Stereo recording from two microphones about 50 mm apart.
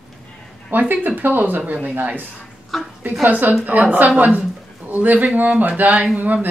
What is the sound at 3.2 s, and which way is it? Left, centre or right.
Speech, right.